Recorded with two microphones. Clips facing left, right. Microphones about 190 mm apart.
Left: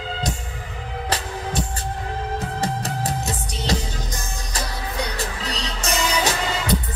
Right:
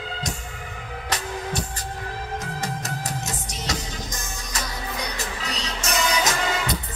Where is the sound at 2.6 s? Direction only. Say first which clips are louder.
Left 5 dB; 35° left (ahead or behind).